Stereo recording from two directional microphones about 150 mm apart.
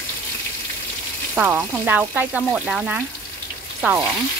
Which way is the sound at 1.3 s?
10° right (ahead or behind).